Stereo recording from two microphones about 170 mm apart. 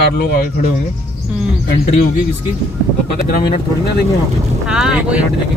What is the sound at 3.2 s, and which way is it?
Speech, 60° left (ahead or behind).